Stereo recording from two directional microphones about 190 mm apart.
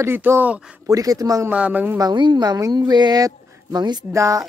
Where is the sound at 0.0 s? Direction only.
10° right (ahead or behind).